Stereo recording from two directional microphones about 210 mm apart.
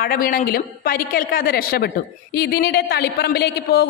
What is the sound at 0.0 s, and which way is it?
A man's voice, 45° left (ahead or behind).